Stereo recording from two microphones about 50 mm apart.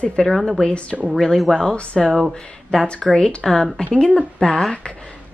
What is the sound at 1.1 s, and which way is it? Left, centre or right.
A woman's voice, centre.